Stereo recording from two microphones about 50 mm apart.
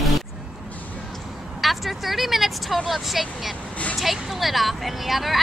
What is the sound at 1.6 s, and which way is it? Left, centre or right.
A woman's voice, centre.